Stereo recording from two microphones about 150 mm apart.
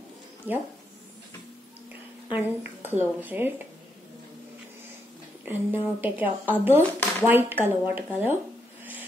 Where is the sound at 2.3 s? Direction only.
10° right (ahead or behind).